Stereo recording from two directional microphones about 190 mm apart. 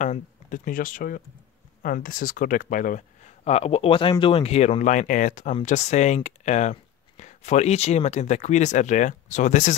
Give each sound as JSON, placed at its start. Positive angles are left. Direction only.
{"t": 0.0, "sound": "speech", "side_deg": 45}